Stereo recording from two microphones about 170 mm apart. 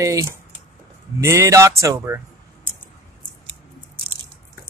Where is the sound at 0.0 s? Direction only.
20° right (ahead or behind).